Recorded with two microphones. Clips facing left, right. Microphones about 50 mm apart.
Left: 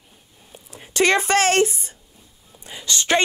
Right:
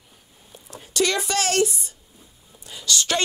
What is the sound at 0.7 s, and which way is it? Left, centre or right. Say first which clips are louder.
A woman's voice: left 5 dB; left.